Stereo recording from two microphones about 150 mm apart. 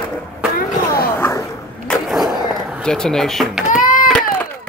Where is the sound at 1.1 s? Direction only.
15° left (ahead or behind).